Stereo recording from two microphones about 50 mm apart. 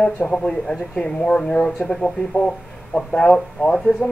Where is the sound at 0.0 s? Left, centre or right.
Centre.